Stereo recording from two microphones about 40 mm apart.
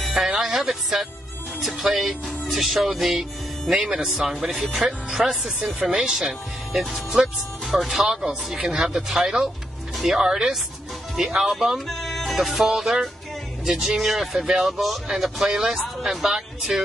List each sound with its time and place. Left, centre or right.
0.1 s music: centre
2.0 s music: centre
3.8 s speech: centre
7.6 s speech: centre
7.9 s speech: centre
11.9 s music: centre
12.6 s speech: centre